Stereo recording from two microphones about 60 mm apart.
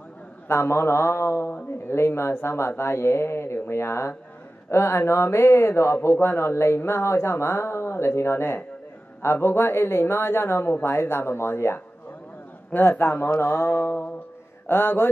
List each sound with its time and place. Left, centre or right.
0.5 s a man's voice: left
13.0 s mantra: left